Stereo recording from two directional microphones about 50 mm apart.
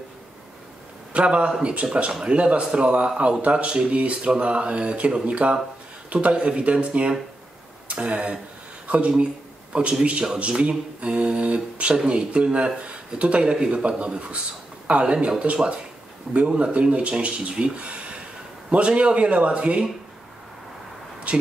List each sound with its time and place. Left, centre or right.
1.1 s a man's voice: right
8.8 s a sound: right
9.1 s speech: right
21.3 s speech: right